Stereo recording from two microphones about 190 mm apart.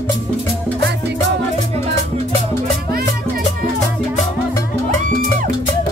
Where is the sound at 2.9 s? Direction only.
50° right (ahead or behind).